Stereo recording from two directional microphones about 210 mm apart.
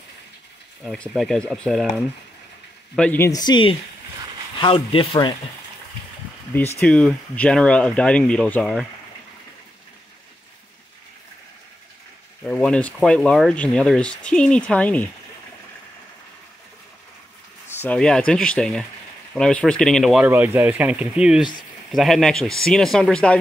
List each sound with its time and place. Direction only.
0.8 s speech: 5° left (ahead or behind)
3.0 s speech: 10° left (ahead or behind)
6.8 s speech: 5° left (ahead or behind)
12.4 s speech: 5° left (ahead or behind)
17.8 s speech: 5° left (ahead or behind)